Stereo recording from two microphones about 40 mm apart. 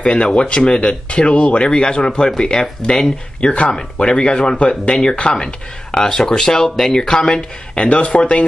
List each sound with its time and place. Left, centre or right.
0.0 s speech: left